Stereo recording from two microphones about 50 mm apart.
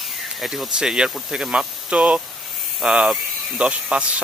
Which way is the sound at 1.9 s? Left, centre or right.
Right.